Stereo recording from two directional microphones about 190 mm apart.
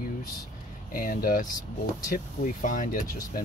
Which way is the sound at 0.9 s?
45° left (ahead or behind).